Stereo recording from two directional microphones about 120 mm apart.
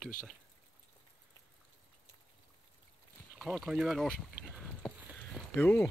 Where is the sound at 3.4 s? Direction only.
5° right (ahead or behind).